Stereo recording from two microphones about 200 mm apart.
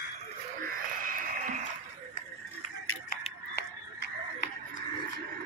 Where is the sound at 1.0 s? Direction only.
40° right (ahead or behind).